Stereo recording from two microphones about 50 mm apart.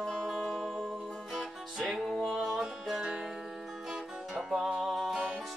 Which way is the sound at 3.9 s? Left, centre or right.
Centre.